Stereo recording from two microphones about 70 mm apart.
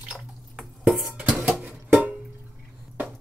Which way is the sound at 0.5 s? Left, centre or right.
Centre.